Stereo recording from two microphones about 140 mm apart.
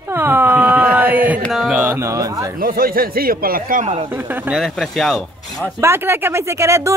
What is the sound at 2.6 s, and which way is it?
A man's voice, 90° right.